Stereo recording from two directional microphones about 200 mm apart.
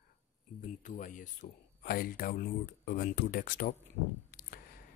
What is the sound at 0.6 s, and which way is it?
Speech, 40° left (ahead or behind).